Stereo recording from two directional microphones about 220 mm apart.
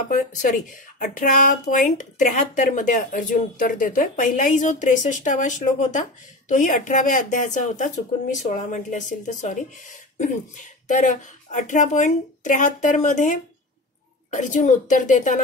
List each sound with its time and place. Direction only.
0.1 s speech: 35° left (ahead or behind)